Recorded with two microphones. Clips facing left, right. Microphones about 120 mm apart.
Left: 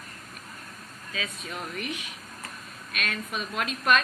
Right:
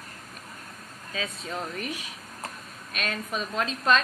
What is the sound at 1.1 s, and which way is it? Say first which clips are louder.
A woman's voice: right 3 dB; 30° right (ahead or behind).